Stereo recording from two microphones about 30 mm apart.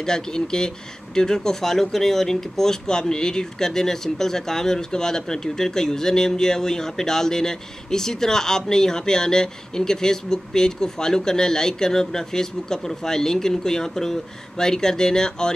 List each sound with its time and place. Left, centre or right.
0.0 s speech: left